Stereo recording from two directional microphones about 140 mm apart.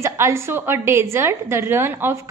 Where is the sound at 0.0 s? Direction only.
20° right (ahead or behind).